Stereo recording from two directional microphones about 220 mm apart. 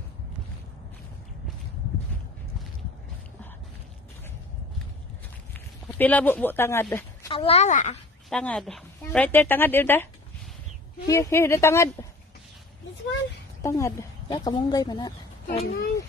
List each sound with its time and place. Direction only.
5.5 s speech: 5° left (ahead or behind)
7.2 s speech: 25° left (ahead or behind)
8.3 s a woman's voice: 5° left (ahead or behind)
11.1 s a woman's voice: 15° left (ahead or behind)
13.6 s a woman's voice: 15° left (ahead or behind)
15.4 s a child's voice: 40° left (ahead or behind)